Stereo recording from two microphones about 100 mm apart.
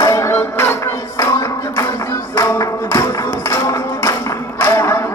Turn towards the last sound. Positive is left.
turn(degrees=30)  # may be behind; listen again after turning